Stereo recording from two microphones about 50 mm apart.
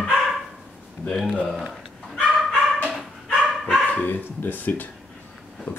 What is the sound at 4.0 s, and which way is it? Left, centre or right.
Speech, left.